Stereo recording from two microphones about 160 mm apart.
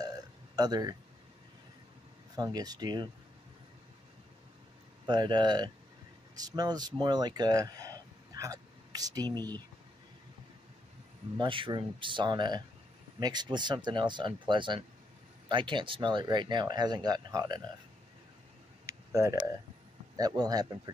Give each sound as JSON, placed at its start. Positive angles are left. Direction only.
{"t": 0.6, "sound": "speech", "side_deg": -25}
{"t": 2.3, "sound": "speech", "side_deg": -25}
{"t": 5.0, "sound": "speech", "side_deg": -25}
{"t": 11.3, "sound": "speech", "side_deg": -30}
{"t": 18.9, "sound": "a sound", "side_deg": -15}
{"t": 20.2, "sound": "speech", "side_deg": -25}